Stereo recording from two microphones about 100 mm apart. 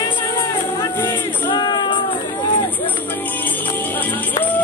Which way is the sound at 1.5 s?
50° left (ahead or behind).